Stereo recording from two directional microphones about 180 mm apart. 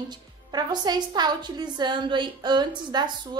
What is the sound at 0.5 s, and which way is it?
A woman's voice, 20° right (ahead or behind).